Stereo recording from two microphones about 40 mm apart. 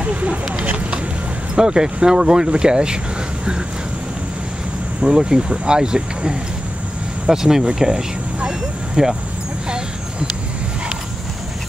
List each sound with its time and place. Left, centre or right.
0.0 s a sound: right
0.6 s vehicle: right
1.5 s speech: centre
5.0 s speech: right
8.5 s vehicle: centre